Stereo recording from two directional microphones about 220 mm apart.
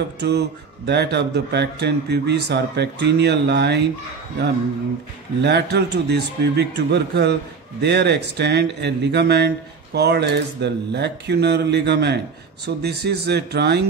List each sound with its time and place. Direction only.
0.2 s speech: 50° right (ahead or behind)
5.4 s speech: 50° right (ahead or behind)